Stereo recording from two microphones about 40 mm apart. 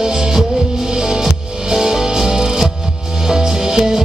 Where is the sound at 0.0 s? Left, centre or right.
Centre.